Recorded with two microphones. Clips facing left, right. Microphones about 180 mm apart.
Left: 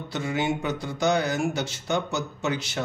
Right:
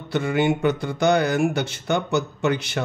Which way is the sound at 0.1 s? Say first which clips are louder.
Right 6 dB; 60° right (ahead or behind).